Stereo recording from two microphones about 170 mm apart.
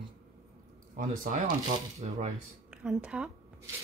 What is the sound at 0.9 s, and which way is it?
Speech, 50° right (ahead or behind).